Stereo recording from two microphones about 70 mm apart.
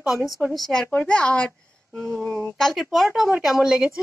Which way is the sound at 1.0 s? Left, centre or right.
Centre.